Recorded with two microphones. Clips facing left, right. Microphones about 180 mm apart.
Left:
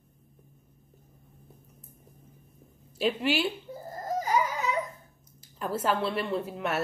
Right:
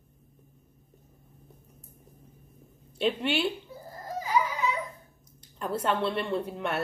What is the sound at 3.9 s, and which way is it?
Baby cry, 45° left (ahead or behind).